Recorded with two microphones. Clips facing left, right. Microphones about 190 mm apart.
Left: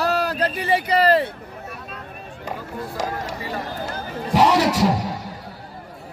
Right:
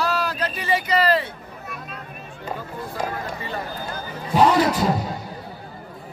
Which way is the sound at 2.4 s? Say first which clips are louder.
Left 1 dB; 90° left.